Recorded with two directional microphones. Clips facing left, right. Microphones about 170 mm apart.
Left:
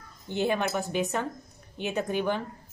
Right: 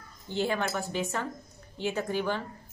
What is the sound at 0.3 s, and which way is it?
Speech, 20° left (ahead or behind).